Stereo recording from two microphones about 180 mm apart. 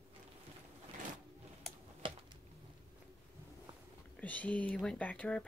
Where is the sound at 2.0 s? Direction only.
30° right (ahead or behind).